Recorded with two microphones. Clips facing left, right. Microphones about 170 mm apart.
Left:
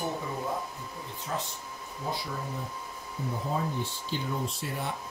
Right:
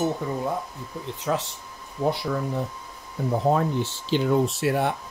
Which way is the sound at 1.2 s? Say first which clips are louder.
Right 9 dB; 85° right.